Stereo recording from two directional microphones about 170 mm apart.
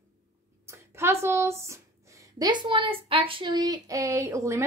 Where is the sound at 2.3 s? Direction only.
25° right (ahead or behind).